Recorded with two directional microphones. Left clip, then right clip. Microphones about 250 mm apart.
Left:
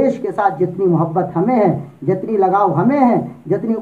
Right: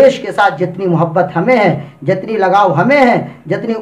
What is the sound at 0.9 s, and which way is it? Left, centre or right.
Speech, right.